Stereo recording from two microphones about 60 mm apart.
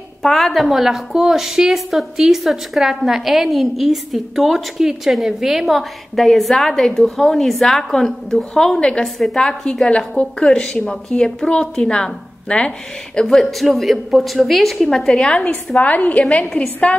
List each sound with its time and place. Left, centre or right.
0.2 s a woman's voice: centre
9.0 s a woman's voice: centre
9.4 s a woman's voice: centre